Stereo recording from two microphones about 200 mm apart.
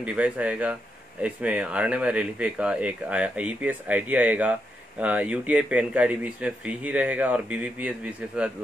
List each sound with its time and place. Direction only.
0.0 s speech: 5° right (ahead or behind)